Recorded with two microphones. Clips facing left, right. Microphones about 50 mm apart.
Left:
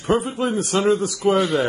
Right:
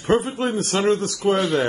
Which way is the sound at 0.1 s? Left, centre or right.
Centre.